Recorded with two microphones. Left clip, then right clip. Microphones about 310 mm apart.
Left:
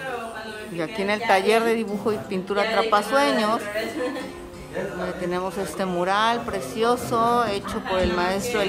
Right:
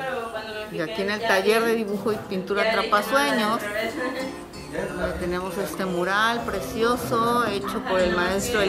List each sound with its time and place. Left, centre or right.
0.7 s speech: centre
5.3 s speech: centre